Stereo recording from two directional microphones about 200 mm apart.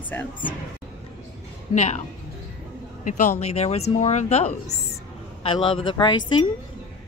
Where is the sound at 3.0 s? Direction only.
40° left (ahead or behind); by 6.2 s 25° left (ahead or behind).